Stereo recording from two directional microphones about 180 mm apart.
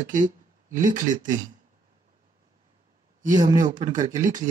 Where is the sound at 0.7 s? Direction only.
45° right (ahead or behind).